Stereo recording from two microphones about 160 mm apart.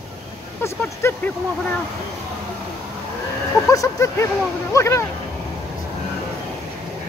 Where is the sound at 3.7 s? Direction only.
20° left (ahead or behind).